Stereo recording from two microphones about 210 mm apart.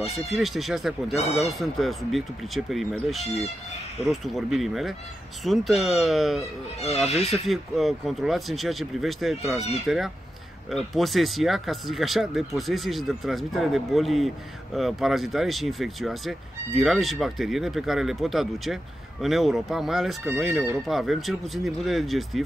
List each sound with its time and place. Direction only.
0.1 s speech: centre (ahead or behind)
1.1 s speech: 30° left (ahead or behind)
1.6 s speech: centre (ahead or behind)
7.4 s speech: centre (ahead or behind)